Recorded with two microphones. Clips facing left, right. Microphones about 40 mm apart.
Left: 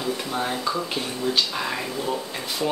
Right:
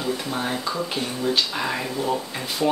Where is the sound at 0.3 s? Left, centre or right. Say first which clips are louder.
Left 1 dB; centre.